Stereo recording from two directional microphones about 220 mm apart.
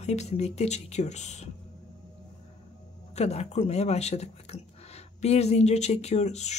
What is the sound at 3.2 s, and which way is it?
Speech, 30° left (ahead or behind).